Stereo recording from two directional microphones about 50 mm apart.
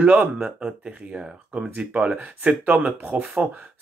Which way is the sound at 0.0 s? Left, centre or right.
Right.